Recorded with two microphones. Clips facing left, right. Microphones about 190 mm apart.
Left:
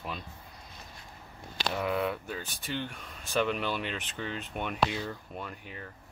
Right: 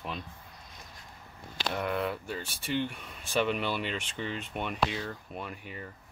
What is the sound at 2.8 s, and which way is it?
Speech, 10° right (ahead or behind).